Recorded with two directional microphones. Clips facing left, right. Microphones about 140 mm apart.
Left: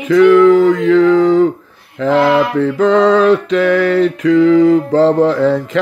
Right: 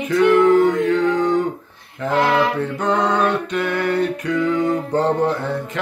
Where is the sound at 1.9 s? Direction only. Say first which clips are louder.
Left 6 dB; 90° left.